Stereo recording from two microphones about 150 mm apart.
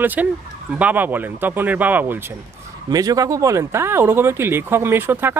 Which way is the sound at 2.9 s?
25° right (ahead or behind).